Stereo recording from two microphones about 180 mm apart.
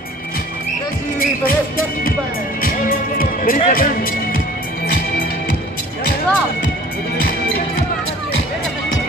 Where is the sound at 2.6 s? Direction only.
50° left (ahead or behind).